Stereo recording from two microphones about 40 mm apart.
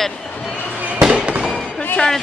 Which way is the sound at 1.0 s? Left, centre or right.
Right.